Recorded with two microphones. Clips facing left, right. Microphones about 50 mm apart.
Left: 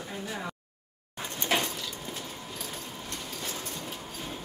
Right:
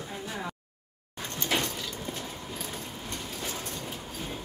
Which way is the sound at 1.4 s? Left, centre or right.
Left.